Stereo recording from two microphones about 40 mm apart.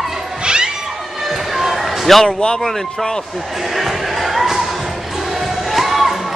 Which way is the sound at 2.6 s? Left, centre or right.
Centre.